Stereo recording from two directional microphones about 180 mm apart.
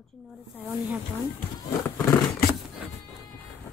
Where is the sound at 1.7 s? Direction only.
15° left (ahead or behind).